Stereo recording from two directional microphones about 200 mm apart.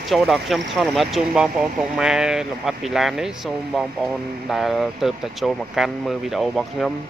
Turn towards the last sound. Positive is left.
turn(degrees=0)  # may be behind; listen again after turning